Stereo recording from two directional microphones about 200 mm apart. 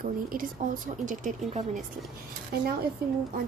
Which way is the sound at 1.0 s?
40° right (ahead or behind).